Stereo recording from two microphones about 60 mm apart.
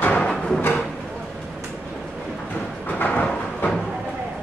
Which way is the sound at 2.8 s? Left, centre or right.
Left.